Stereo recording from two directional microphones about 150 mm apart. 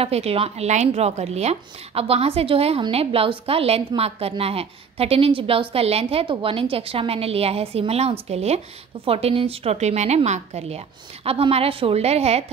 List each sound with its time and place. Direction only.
0.0 s a woman's voice: 40° right (ahead or behind)